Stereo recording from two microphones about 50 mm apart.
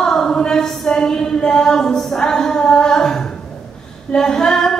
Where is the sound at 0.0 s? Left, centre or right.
Centre.